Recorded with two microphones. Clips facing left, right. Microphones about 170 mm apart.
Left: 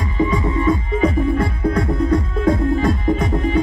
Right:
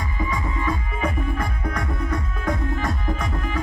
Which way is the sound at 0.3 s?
25° left (ahead or behind).